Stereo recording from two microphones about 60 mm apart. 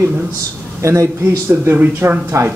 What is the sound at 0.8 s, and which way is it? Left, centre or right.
Speech, right.